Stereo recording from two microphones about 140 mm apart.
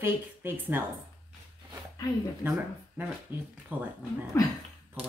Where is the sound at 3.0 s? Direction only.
10° right (ahead or behind).